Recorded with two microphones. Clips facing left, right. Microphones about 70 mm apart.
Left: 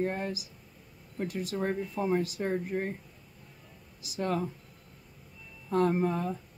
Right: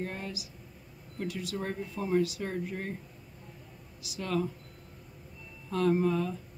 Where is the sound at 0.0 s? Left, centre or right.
Left.